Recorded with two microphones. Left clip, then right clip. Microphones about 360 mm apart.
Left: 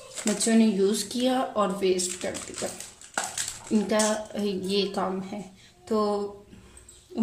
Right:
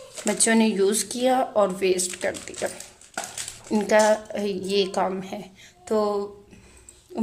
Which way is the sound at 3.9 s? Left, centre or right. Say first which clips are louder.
Right 9 dB; centre.